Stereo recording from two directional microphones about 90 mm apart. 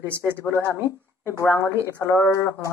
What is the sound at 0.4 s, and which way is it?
Speech, 30° left (ahead or behind).